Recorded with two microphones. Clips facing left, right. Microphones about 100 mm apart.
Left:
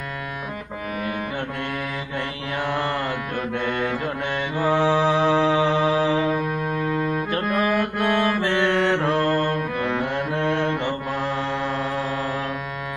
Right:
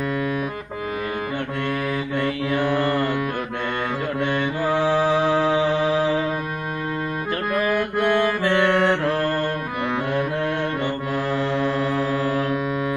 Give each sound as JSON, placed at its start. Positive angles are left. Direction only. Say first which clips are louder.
{"t": 7.5, "sound": "mantra", "louder": "right 1 dB", "side_deg": -20}
{"t": 10.4, "sound": "music", "louder": "left 1 dB", "side_deg": -5}